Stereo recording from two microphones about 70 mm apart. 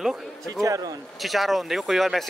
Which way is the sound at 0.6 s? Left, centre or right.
Right.